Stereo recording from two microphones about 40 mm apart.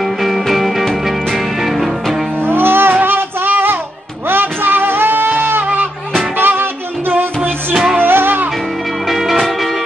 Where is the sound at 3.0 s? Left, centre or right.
Right.